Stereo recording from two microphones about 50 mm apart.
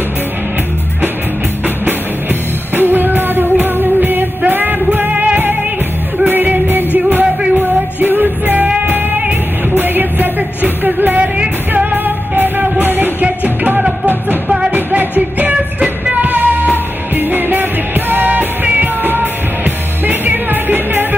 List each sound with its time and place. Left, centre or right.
2.7 s music: right
8.6 s music: right
9.8 s music: right
13.2 s music: right
16.3 s music: right